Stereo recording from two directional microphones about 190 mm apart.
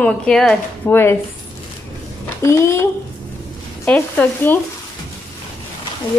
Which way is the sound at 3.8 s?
10° left (ahead or behind).